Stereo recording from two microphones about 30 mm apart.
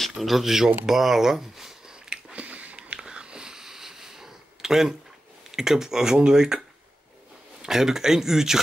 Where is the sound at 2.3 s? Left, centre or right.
Right.